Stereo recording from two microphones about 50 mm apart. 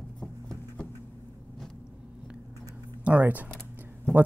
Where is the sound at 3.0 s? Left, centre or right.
Right.